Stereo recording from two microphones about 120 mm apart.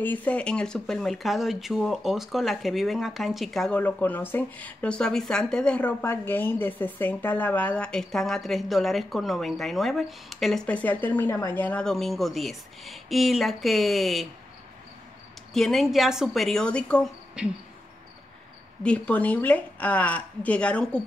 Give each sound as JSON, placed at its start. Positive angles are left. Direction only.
{"t": 0.0, "sound": "speech", "side_deg": 15}
{"t": 3.8, "sound": "speech", "side_deg": 15}
{"t": 15.5, "sound": "speech", "side_deg": 0}
{"t": 18.8, "sound": "speech", "side_deg": 10}